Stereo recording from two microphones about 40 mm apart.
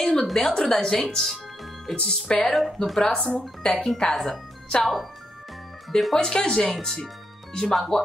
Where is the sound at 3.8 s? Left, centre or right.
Centre.